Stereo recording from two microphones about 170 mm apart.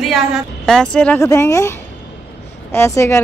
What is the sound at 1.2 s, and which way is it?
Speech, 20° left (ahead or behind).